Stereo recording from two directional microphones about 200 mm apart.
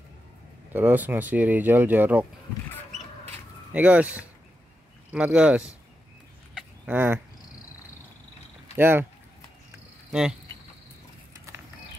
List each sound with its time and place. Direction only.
0.7 s speech: 10° right (ahead or behind)
3.7 s speech: 5° right (ahead or behind)
5.1 s speech: 5° right (ahead or behind)
6.9 s speech: 10° right (ahead or behind)
8.7 s speech: 10° right (ahead or behind)